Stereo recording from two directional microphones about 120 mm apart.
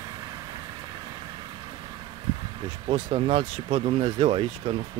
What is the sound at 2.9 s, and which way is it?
Speech, 50° right (ahead or behind).